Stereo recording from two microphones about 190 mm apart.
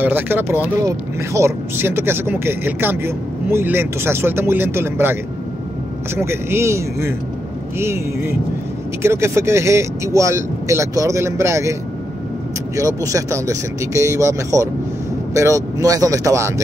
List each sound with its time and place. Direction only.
0.0 s speech: 10° right (ahead or behind)
6.1 s speech: 15° right (ahead or behind)
12.7 s speech: 15° right (ahead or behind)